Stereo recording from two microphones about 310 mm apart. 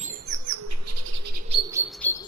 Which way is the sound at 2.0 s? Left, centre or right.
Centre.